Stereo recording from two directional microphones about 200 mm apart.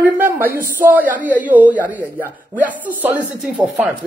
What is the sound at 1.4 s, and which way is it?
Speech, 10° right (ahead or behind).